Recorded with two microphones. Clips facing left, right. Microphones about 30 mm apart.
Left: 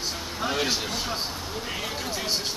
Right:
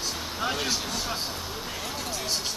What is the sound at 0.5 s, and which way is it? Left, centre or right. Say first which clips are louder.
Speech: left 2 dB; centre.